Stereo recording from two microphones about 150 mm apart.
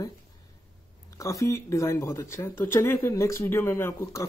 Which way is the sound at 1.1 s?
20° left (ahead or behind).